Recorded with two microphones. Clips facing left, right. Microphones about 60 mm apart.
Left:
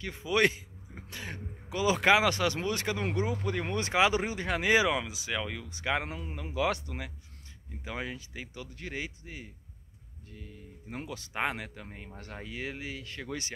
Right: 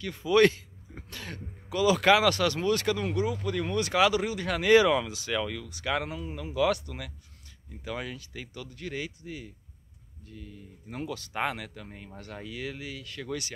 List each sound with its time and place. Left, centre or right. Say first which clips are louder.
0.0 s a man's voice: right 5 dB; left